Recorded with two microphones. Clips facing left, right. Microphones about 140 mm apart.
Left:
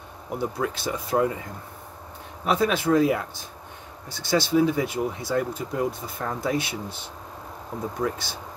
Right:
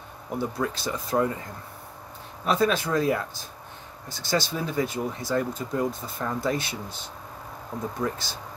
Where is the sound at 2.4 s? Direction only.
5° left (ahead or behind).